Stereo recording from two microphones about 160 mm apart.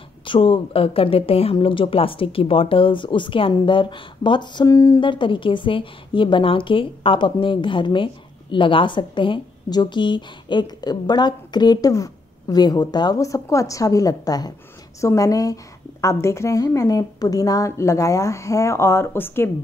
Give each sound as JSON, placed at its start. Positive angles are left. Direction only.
{"t": 0.2, "sound": "speech", "side_deg": 30}
{"t": 5.0, "sound": "a woman's voice", "side_deg": 30}